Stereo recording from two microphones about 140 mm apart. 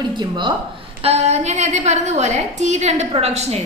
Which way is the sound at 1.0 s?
50° right (ahead or behind).